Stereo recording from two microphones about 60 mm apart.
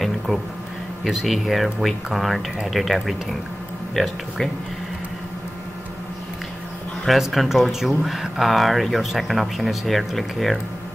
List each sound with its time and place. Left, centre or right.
0.3 s speech: centre
7.1 s speech: centre